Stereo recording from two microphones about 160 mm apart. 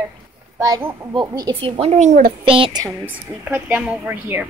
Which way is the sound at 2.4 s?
35° right (ahead or behind).